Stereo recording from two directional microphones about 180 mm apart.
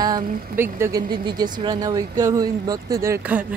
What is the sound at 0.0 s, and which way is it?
Speech, 15° right (ahead or behind).